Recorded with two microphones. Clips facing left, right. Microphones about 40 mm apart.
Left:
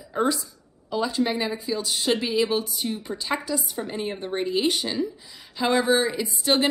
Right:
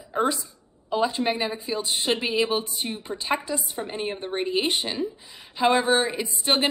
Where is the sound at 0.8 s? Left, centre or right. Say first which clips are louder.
Right 1 dB; right.